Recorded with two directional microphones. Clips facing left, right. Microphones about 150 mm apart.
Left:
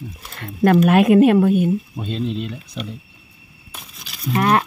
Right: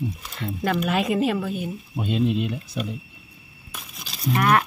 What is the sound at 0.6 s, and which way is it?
Speech, 55° left (ahead or behind).